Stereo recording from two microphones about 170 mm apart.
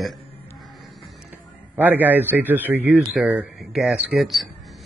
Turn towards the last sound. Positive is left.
turn(degrees=0)  # may be behind; listen again after turning